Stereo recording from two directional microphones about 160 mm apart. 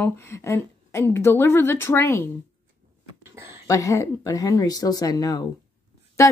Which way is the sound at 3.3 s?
15° right (ahead or behind).